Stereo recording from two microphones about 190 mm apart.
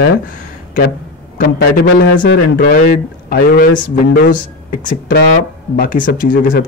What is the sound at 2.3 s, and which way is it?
Speech, 55° left (ahead or behind).